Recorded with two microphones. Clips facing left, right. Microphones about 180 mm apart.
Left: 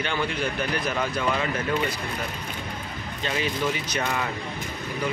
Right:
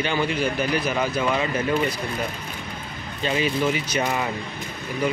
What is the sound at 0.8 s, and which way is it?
Speech, 5° right (ahead or behind).